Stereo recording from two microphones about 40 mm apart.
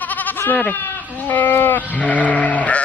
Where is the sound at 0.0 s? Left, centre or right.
Left.